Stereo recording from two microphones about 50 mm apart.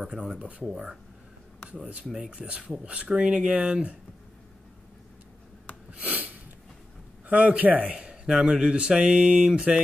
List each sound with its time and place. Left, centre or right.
0.0 s a man's voice: centre
5.9 s a sound: right
7.2 s a man's voice: right